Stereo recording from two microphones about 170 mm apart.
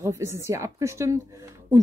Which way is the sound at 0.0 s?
20° right (ahead or behind).